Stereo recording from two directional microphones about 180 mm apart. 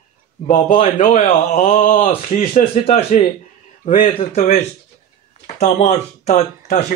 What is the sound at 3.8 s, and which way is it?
Speech, 45° left (ahead or behind).